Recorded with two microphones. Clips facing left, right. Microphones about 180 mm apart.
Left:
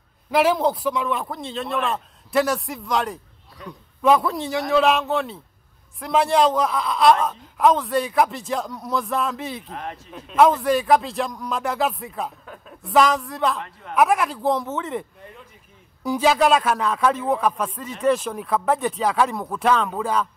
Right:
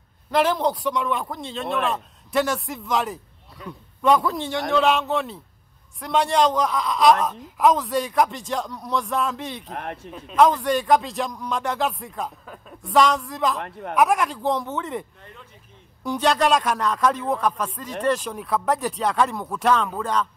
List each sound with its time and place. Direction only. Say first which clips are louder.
0.3 s speech: left 2 dB; 5° left (ahead or behind)
9.7 s speech: right 1 dB; 60° right (ahead or behind)
10.1 s speech: left 1 dB; 5° left (ahead or behind)
13.6 s speech: right 4 dB; 60° right (ahead or behind)
13.9 s speech: left 1 dB; centre (ahead or behind)